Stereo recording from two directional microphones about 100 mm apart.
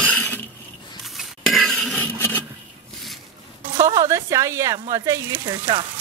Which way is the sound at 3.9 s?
30° right (ahead or behind).